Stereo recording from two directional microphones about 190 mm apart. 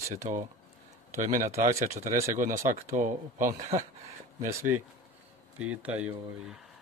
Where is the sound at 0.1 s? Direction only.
40° right (ahead or behind).